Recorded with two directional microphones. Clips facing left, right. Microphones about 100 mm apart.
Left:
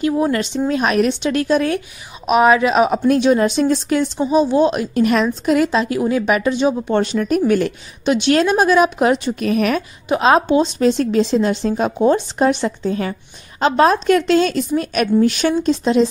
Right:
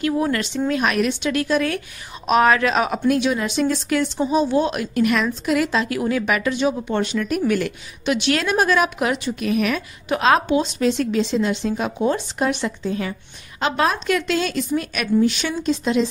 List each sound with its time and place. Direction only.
0.0 s speech: 25° left (ahead or behind)
2.2 s speech: 15° left (ahead or behind)
3.1 s a woman's voice: 35° left (ahead or behind)
10.0 s a woman's voice: 25° left (ahead or behind)
15.1 s a woman's voice: 50° left (ahead or behind)